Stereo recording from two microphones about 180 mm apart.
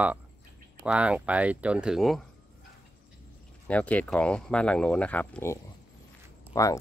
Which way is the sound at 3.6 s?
10° left (ahead or behind).